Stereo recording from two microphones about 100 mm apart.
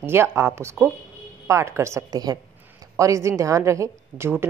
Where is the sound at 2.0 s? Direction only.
40° right (ahead or behind).